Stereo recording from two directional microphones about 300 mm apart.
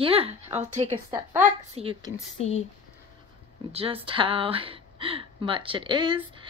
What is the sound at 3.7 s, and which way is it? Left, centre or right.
Speech, centre.